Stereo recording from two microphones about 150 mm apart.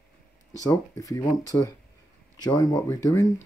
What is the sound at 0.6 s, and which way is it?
Speech, 20° left (ahead or behind).